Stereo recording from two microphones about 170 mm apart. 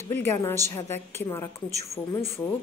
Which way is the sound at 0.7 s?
15° left (ahead or behind).